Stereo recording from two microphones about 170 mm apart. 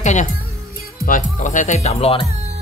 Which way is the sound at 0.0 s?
45° left (ahead or behind).